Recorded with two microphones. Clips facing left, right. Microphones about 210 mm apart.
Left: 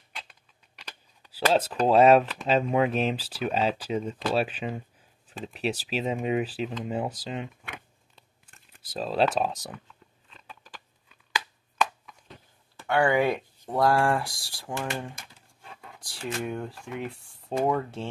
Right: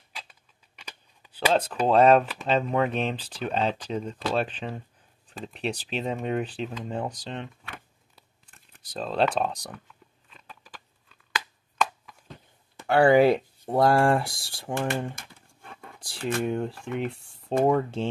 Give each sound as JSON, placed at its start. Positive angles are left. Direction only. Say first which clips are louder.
{"t": 0.1, "sound": "a sound", "louder": "even", "side_deg": 0}
{"t": 2.2, "sound": "speech", "louder": "left 1 dB", "side_deg": 0}
{"t": 8.2, "sound": "a sound", "louder": "even", "side_deg": 0}
{"t": 12.8, "sound": "speech", "louder": "right 5 dB", "side_deg": -35}
{"t": 14.7, "sound": "speech", "louder": "right 4 dB", "side_deg": -55}
{"t": 16.4, "sound": "speech", "louder": "right 5 dB", "side_deg": -25}